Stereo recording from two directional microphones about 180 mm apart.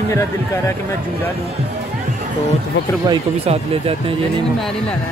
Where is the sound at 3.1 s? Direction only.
35° right (ahead or behind).